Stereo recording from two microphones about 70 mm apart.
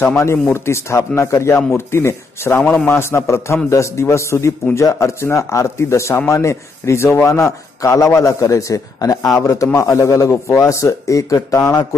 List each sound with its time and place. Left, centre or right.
0.2 s speech: left
2.6 s a man's voice: centre
2.9 s speech: left